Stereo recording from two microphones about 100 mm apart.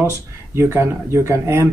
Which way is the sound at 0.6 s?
25° right (ahead or behind).